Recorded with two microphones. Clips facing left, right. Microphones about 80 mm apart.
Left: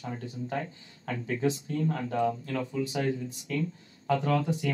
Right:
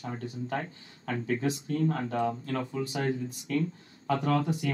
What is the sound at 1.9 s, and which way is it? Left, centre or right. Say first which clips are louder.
Speech: left 1 dB; right.